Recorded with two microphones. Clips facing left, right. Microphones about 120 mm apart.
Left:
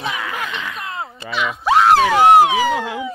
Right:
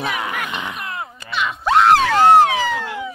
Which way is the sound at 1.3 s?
Centre (ahead or behind).